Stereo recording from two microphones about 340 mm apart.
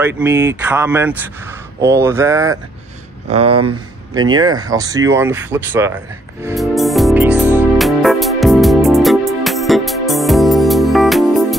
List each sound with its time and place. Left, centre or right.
0.0 s speech: centre
3.3 s speech: right
4.1 s speech: centre
6.4 s music: centre